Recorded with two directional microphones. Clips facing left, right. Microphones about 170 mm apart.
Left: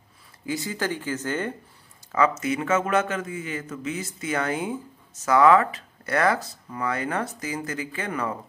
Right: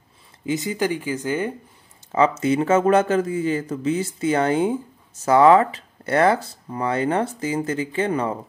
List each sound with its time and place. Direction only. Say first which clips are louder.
0.5 s speech: right 5 dB; 20° right (ahead or behind)
2.1 s speech: right 5 dB; 30° right (ahead or behind)